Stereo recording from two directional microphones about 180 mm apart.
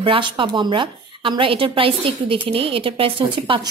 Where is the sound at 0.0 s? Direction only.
30° right (ahead or behind).